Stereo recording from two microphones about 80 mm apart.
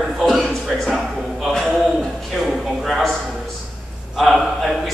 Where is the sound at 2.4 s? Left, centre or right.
Centre.